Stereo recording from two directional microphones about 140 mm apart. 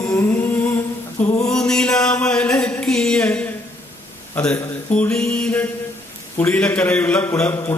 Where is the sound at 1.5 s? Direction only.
5° left (ahead or behind).